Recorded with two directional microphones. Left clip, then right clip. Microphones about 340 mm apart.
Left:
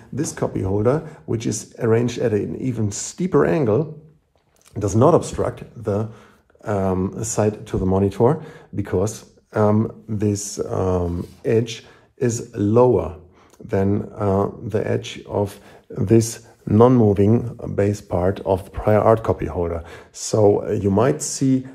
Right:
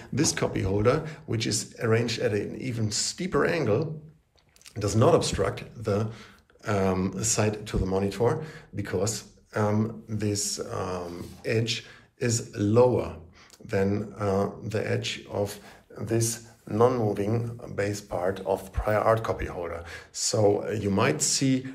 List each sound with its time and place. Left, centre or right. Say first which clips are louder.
0.1 s speech: left 2 dB; centre
16.7 s speech: left 9 dB; centre